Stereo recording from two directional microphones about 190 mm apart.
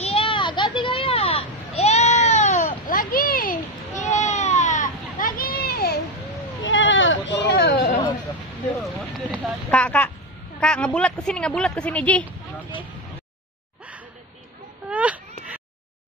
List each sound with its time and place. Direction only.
0.0 s a sound: 30° left (ahead or behind)
2.9 s baby cry: 50° left (ahead or behind)
6.6 s sheep: 85° left; by 8.0 s 55° left (ahead or behind)
9.7 s a sound: 5° left (ahead or behind)
10.6 s a woman's voice: 5° left (ahead or behind)
14.9 s baby cry: 5° right (ahead or behind)